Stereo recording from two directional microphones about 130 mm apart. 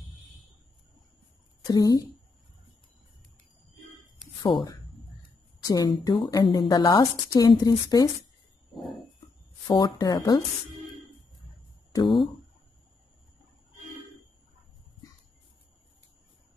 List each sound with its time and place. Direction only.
1.6 s a woman's voice: 30° left (ahead or behind)
5.6 s speech: 30° left (ahead or behind)
9.7 s speech: 30° left (ahead or behind)
11.9 s speech: 40° left (ahead or behind)